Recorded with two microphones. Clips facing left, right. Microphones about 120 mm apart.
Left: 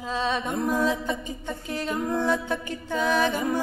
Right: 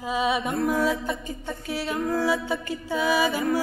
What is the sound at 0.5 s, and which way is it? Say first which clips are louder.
A capella: right 1 dB; 15° left (ahead or behind).